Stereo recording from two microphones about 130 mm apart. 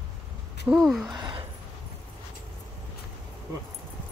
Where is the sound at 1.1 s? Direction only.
35° right (ahead or behind).